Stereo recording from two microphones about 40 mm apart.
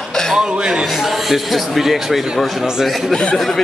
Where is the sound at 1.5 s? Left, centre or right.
Centre.